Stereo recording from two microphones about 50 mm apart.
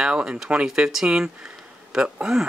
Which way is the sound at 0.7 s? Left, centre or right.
Centre.